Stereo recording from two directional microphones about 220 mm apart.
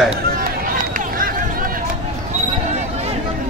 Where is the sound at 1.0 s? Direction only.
40° right (ahead or behind).